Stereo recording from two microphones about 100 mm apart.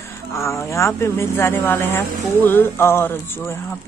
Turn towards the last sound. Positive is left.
turn(degrees=25)  # may be behind; listen again after turning